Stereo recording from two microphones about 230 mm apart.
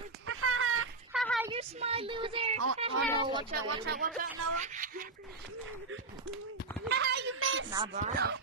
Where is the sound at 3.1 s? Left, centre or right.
Left.